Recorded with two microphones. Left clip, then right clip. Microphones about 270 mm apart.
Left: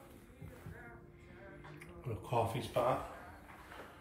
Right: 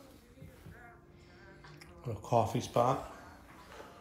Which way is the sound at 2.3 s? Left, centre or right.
Centre.